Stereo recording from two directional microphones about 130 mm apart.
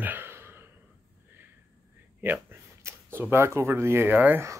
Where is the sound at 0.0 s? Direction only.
15° right (ahead or behind).